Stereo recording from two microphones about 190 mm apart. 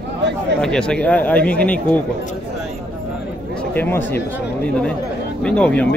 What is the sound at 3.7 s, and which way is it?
Speech, 10° left (ahead or behind).